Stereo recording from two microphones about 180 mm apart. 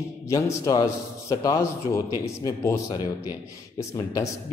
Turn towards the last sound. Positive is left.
turn(degrees=20)  # may be behind; listen again after turning